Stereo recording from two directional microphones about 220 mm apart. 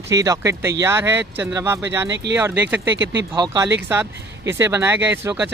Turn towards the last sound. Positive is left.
turn(degrees=-10)  # may be behind; listen again after turning